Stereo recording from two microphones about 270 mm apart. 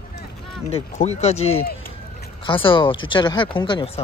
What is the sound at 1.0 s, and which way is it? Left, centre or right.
Speech, left.